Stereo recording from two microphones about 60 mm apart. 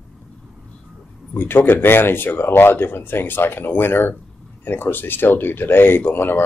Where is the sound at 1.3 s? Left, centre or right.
Left.